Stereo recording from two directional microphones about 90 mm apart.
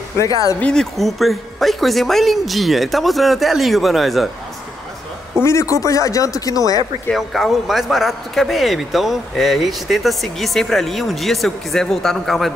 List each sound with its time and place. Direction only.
0.2 s speech: 40° left (ahead or behind)
0.6 s speech: 10° left (ahead or behind)
0.9 s speech: centre (ahead or behind)
5.4 s speech: 35° left (ahead or behind)
7.1 s speech: centre (ahead or behind)